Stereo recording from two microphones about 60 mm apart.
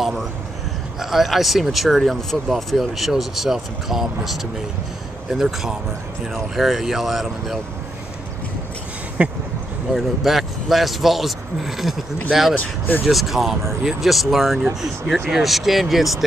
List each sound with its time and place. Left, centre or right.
0.0 s vehicle: centre
0.9 s speech: centre
9.2 s speech: right
9.9 s speech: centre